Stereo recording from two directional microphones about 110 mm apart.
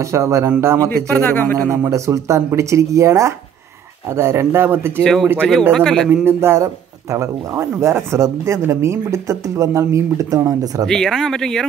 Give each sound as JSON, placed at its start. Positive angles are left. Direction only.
{"t": 0.0, "sound": "speech", "side_deg": -25}
{"t": 1.2, "sound": "speech", "side_deg": 20}
{"t": 1.7, "sound": "speech", "side_deg": -25}
{"t": 5.0, "sound": "speech", "side_deg": 5}
{"t": 6.0, "sound": "speech", "side_deg": -20}
{"t": 10.9, "sound": "speech", "side_deg": 5}